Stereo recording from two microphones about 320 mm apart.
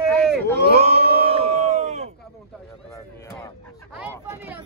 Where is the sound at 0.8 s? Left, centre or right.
Centre.